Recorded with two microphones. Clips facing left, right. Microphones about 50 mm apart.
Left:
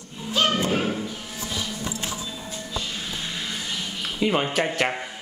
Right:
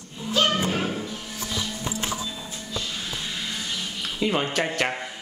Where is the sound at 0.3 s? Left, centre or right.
Centre.